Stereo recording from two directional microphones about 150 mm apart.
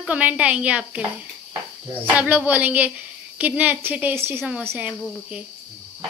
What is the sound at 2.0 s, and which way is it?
Speech, 10° right (ahead or behind).